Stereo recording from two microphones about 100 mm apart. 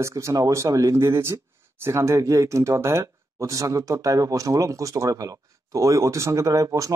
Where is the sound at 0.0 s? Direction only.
30° right (ahead or behind).